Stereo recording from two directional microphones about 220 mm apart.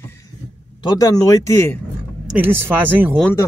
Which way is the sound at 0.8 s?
15° left (ahead or behind).